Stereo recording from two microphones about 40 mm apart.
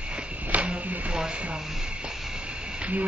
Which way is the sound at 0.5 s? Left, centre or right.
Right.